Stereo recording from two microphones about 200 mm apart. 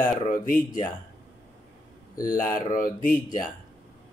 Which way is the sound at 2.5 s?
45° left (ahead or behind).